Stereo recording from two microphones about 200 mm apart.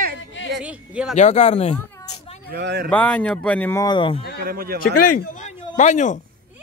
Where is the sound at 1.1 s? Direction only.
35° left (ahead or behind).